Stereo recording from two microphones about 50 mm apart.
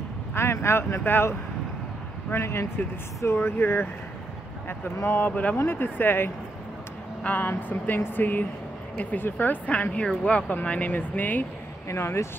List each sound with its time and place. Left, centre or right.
0.3 s speech: left
2.3 s speech: left
5.3 s speech: left
5.7 s speech: left
11.9 s speech: left